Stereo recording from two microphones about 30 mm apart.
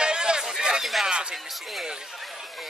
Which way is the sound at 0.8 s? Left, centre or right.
Centre.